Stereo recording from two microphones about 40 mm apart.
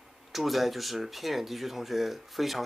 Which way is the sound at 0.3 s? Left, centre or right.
Centre.